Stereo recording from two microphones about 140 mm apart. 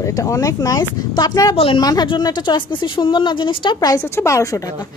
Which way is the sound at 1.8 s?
30° left (ahead or behind).